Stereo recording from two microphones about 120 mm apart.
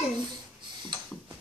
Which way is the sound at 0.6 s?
40° right (ahead or behind).